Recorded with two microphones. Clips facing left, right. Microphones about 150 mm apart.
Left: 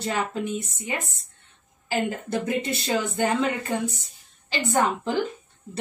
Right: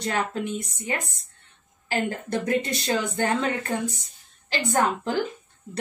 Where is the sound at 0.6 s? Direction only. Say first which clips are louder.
Right 1 dB; 5° left (ahead or behind).